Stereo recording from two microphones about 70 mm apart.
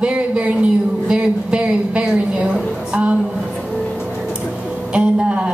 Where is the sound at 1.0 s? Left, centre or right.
Centre.